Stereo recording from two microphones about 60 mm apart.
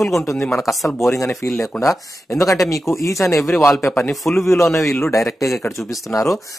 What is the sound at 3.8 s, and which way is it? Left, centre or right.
Speech, left.